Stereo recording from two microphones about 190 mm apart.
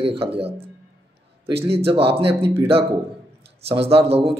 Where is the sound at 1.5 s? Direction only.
30° right (ahead or behind).